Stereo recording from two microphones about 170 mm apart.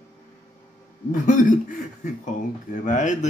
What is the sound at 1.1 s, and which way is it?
Speech, 50° left (ahead or behind).